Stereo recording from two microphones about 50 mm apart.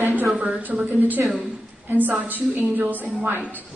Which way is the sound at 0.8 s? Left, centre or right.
Right.